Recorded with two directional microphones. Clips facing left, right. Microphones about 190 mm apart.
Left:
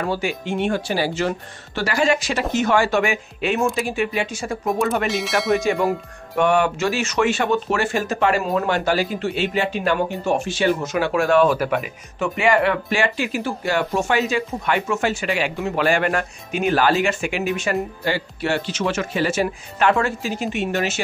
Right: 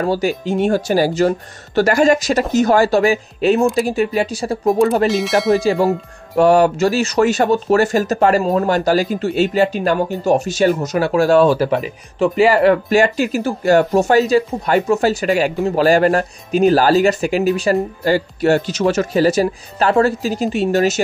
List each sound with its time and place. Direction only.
0.0 s speech: 40° right (ahead or behind)
5.0 s speech: centre (ahead or behind)
6.3 s speech: 35° right (ahead or behind)